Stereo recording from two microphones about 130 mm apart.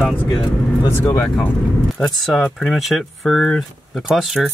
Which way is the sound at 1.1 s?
15° left (ahead or behind).